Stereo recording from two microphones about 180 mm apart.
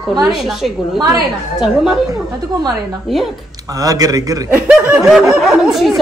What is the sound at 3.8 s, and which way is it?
Speech, 20° right (ahead or behind).